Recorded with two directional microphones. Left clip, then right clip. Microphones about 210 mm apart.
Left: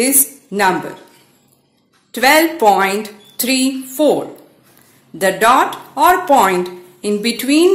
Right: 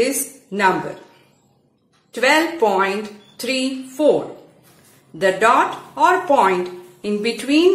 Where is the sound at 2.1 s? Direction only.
35° left (ahead or behind).